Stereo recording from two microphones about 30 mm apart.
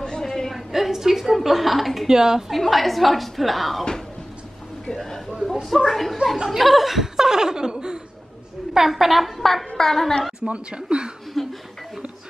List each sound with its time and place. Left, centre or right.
0.0 s a sound: centre
0.7 s a sound: centre
1.4 s a woman's voice: centre
2.0 s a woman's voice: centre
2.5 s a woman's voice: centre
5.0 s a woman's voice: centre
5.5 s a woman's voice: centre
6.3 s speech: centre
6.6 s speech: centre; by 8.0 s right
8.7 s speech: centre
9.4 s a woman's voice: centre
10.5 s speech: right
11.4 s a woman's voice: centre